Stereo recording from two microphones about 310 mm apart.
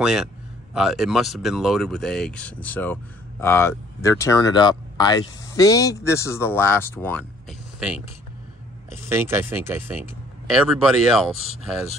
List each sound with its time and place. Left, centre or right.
0.0 s speech: centre
9.1 s speech: centre